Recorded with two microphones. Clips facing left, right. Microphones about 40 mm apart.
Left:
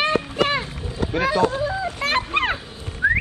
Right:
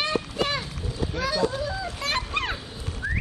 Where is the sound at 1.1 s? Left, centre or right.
Left.